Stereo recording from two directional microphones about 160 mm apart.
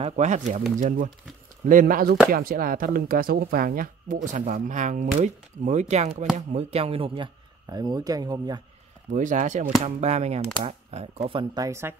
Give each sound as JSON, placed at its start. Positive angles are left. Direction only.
{"t": 0.0, "sound": "speech", "side_deg": -45}
{"t": 7.7, "sound": "speech", "side_deg": -25}
{"t": 9.1, "sound": "speech", "side_deg": -55}
{"t": 11.2, "sound": "speech", "side_deg": -30}